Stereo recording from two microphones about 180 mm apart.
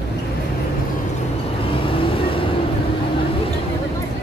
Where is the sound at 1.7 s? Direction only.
30° left (ahead or behind).